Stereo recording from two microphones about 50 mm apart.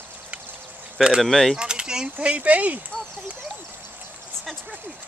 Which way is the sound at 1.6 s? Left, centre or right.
Centre.